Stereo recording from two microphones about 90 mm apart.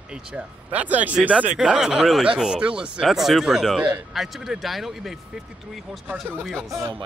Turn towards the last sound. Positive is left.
turn(degrees=0)  # may be behind; listen again after turning